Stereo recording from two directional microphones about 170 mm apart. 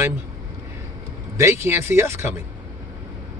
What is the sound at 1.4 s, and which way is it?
Speech, 15° right (ahead or behind).